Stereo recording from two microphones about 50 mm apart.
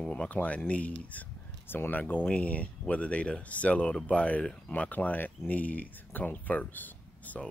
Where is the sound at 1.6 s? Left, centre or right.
Left.